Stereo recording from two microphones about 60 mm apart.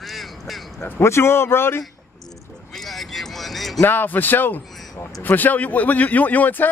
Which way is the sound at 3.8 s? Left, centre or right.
Left.